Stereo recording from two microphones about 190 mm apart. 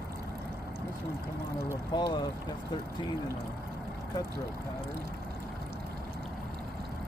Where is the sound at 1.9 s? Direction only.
25° left (ahead or behind).